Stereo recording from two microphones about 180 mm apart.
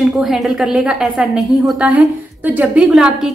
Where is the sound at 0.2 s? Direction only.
Centre (ahead or behind).